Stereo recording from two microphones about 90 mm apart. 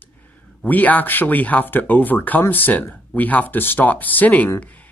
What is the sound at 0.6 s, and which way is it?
Speech, 20° left (ahead or behind).